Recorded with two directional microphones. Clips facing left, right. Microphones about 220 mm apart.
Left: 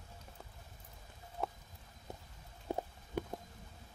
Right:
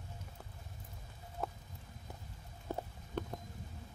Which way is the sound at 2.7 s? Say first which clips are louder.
Left 2 dB; 15° left (ahead or behind).